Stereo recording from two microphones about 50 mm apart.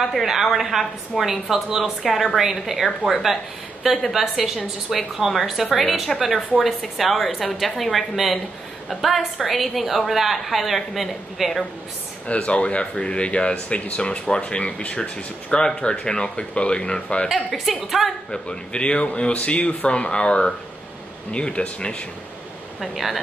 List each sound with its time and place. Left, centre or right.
0.0 s a woman's voice: centre
12.3 s speech: left
17.7 s a woman's voice: centre
18.3 s speech: centre
22.8 s a woman's voice: centre